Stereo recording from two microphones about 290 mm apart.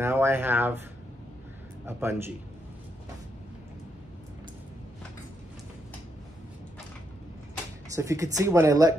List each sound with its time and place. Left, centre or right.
0.0 s speech: centre
1.9 s speech: centre
7.9 s speech: centre